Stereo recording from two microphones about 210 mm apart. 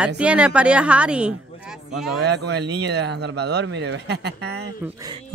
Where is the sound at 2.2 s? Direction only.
55° right (ahead or behind).